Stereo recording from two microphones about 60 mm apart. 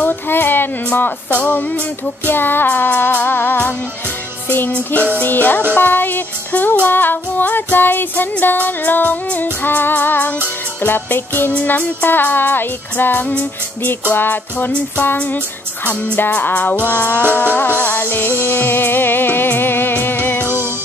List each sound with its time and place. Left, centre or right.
0.0 s a sound: left
0.9 s music: left
4.7 s music: left
20.4 s music: right